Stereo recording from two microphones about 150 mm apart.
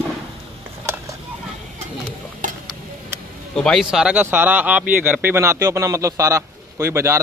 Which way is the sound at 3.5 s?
5° left (ahead or behind).